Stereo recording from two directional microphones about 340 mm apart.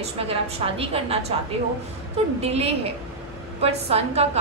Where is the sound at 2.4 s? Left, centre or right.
Centre.